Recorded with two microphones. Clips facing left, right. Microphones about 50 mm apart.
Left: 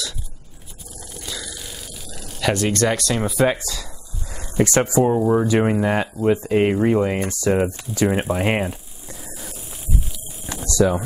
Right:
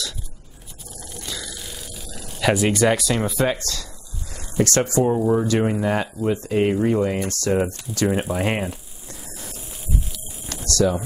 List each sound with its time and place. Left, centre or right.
1.2 s speech: centre
10.5 s speech: centre